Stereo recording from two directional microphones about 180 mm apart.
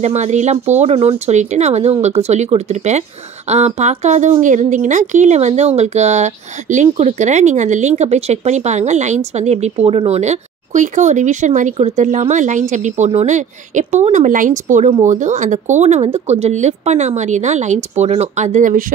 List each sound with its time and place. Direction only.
0.0 s speech: 40° right (ahead or behind)